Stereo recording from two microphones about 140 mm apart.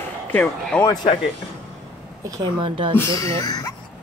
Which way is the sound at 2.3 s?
35° right (ahead or behind).